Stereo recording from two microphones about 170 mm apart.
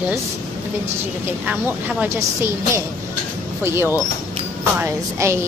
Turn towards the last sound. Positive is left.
turn(degrees=-15)  # may be behind; listen again after turning